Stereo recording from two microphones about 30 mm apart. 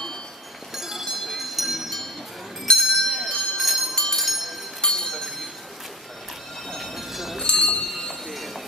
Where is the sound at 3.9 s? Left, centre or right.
Centre.